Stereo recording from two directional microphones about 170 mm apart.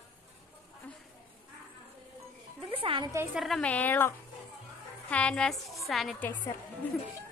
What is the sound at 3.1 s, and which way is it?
Speech, 15° right (ahead or behind).